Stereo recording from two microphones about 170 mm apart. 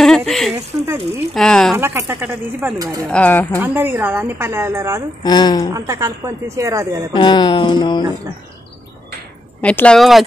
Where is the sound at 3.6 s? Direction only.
10° right (ahead or behind).